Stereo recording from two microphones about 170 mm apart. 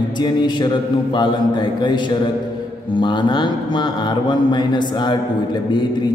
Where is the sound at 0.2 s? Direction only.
25° left (ahead or behind).